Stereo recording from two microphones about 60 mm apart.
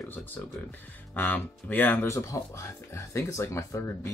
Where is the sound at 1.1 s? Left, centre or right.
Left.